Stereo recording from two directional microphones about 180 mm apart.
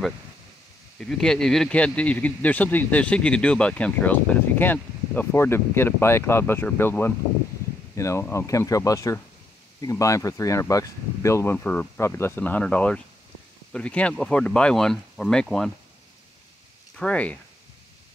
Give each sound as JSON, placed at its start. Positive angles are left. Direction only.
{"t": 0.9, "sound": "speech", "side_deg": 0}
{"t": 16.9, "sound": "speech", "side_deg": 5}